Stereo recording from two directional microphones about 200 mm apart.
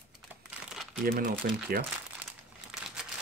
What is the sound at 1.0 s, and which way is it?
Speech, 45° right (ahead or behind).